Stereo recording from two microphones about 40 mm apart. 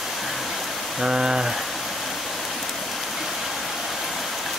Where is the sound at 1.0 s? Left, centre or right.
Centre.